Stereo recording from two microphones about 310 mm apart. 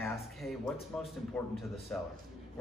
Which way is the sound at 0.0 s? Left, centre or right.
Centre.